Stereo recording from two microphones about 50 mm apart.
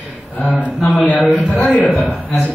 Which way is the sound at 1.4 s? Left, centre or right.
Centre.